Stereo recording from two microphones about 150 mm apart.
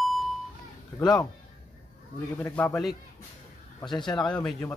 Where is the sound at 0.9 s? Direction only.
25° left (ahead or behind).